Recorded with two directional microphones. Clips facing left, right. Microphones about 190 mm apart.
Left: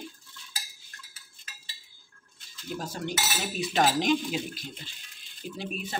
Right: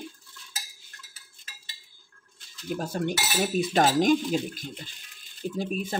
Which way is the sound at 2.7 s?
55° right (ahead or behind).